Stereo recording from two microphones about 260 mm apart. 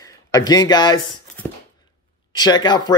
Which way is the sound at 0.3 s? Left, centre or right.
Centre.